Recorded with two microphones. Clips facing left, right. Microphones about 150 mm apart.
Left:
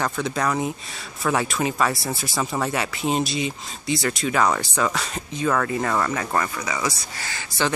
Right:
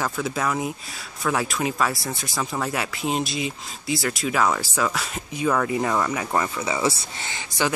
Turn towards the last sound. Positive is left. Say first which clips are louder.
# even
turn(degrees=-15)  # may be behind; listen again after turning